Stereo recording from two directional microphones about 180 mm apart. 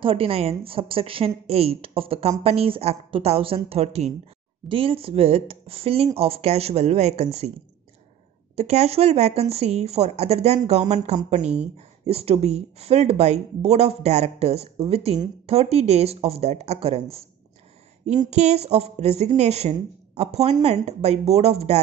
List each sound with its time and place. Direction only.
0.0 s speech: 30° right (ahead or behind)
8.5 s speech: 35° right (ahead or behind)
11.4 s speech: 5° right (ahead or behind)
12.1 s speech: 35° right (ahead or behind)
18.3 s speech: 35° right (ahead or behind)